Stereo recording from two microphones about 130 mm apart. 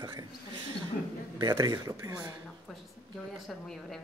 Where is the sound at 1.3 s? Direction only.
30° right (ahead or behind).